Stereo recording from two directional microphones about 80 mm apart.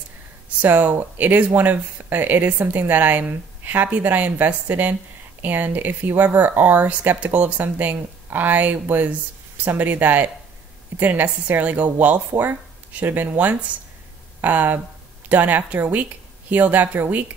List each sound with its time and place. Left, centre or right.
0.6 s speech: centre